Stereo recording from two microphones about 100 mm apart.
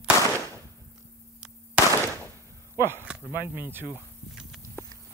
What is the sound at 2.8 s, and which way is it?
Chop, 25° left (ahead or behind).